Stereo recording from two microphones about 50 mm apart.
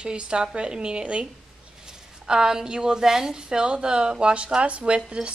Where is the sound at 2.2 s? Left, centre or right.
Centre.